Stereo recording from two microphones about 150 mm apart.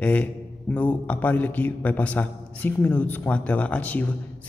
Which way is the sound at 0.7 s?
10° left (ahead or behind).